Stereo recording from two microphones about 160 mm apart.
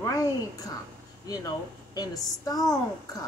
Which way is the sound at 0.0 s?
25° left (ahead or behind).